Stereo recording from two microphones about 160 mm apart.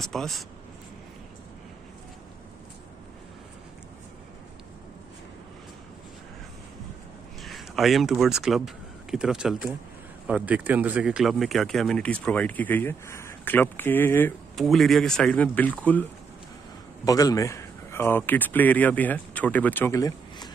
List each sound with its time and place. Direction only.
0.0 s speech: centre (ahead or behind)
7.4 s speech: centre (ahead or behind)
14.5 s speech: centre (ahead or behind)
17.0 s speech: 20° left (ahead or behind)
20.0 s a sound: 20° left (ahead or behind)